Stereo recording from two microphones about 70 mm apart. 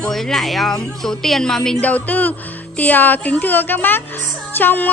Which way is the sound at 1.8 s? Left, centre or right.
Left.